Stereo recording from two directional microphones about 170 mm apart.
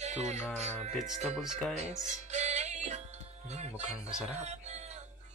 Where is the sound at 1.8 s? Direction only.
45° right (ahead or behind).